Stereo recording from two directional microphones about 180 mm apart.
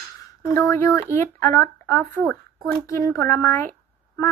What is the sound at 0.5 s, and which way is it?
A woman's voice, 15° left (ahead or behind).